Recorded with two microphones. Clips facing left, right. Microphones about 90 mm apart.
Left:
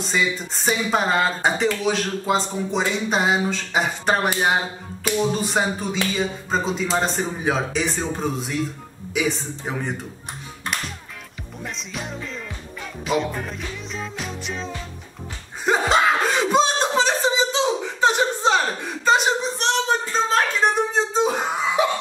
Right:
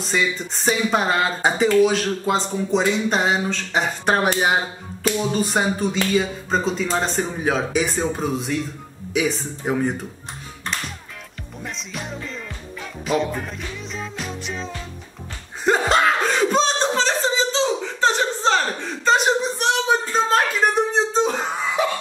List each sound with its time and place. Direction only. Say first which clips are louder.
0.0 s speech: right 1 dB; centre (ahead or behind)
11.6 s speech: even; centre (ahead or behind)
13.0 s music: right 1 dB; centre (ahead or behind)
15.6 s a sound: right 1 dB; centre (ahead or behind)